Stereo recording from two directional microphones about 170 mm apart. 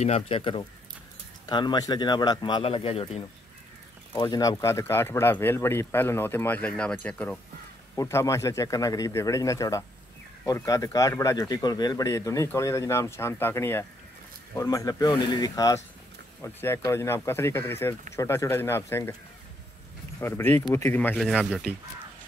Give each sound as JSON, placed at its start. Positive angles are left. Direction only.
{"t": 0.0, "sound": "a man's voice", "side_deg": 35}
{"t": 4.1, "sound": "a man's voice", "side_deg": 20}
{"t": 20.2, "sound": "speech", "side_deg": 15}
{"t": 21.4, "sound": "speech", "side_deg": -5}